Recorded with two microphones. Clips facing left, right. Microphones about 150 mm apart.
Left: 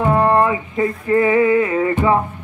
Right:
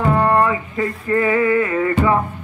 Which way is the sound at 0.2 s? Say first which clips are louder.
Left 1 dB; 20° left (ahead or behind).